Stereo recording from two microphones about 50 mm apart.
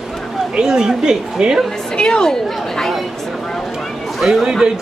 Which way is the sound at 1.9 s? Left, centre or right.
Centre.